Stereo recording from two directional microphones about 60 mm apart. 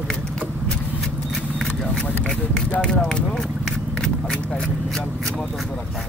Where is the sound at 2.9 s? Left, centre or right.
Centre.